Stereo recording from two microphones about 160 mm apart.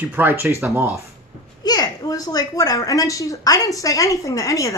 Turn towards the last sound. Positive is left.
turn(degrees=20)  # may be behind; listen again after turning